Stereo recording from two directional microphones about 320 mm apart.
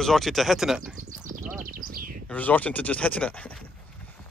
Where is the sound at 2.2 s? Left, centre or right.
Centre.